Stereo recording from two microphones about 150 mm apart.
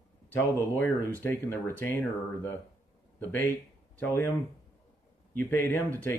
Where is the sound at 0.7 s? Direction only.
15° left (ahead or behind).